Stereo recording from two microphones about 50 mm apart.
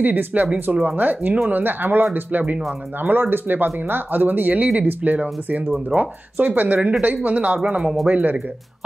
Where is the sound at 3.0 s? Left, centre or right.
Right.